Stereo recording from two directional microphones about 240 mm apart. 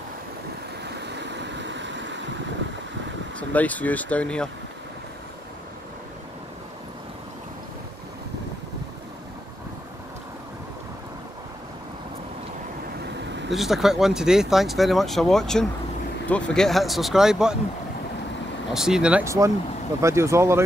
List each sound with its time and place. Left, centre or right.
0.8 s vehicle: right
3.3 s speech: centre
13.2 s vehicle: right
13.5 s speech: centre
18.7 s speech: centre